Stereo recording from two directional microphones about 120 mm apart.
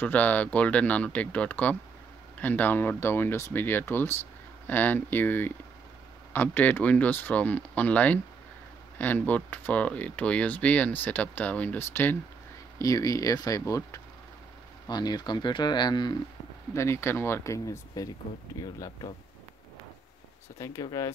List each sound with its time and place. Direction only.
0.0 s speech: 15° left (ahead or behind)
12.7 s speech: 30° left (ahead or behind)
16.7 s speech: 20° left (ahead or behind)
20.5 s speech: 25° left (ahead or behind)